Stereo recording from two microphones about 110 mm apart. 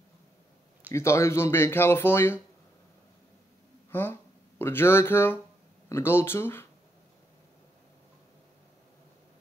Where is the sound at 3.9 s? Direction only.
20° left (ahead or behind).